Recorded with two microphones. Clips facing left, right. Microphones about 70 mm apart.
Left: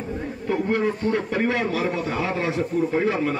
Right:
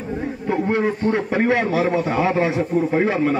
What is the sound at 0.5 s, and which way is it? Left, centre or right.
A man's voice, right.